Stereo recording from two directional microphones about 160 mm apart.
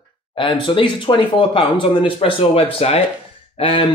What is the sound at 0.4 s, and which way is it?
Speech, 35° left (ahead or behind).